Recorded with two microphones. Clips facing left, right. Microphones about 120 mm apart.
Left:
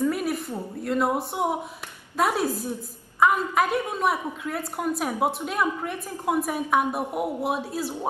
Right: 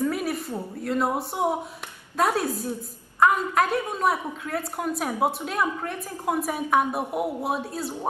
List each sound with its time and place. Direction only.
0.1 s a woman's voice: centre (ahead or behind)